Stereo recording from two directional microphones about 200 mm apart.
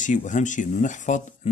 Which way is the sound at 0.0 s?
40° left (ahead or behind).